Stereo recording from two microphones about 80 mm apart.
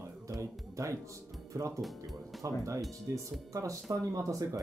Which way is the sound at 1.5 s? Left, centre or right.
Right.